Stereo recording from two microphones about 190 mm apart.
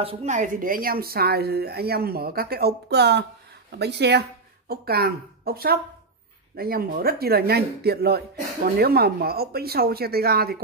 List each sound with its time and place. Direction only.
0.0 s speech: 30° right (ahead or behind); by 10.6 s 55° right (ahead or behind)